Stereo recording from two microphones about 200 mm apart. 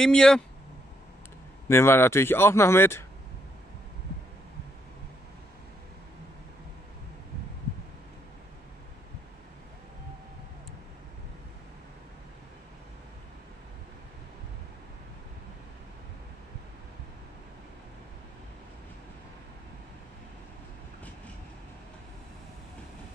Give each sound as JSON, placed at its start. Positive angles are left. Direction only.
{"t": 0.0, "sound": "speech", "side_deg": 5}
{"t": 1.7, "sound": "speech", "side_deg": 10}